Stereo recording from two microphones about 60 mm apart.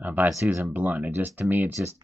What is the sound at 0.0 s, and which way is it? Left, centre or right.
Speech, right.